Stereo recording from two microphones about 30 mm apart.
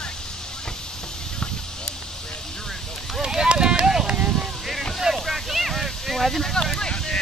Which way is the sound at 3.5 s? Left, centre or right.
Right.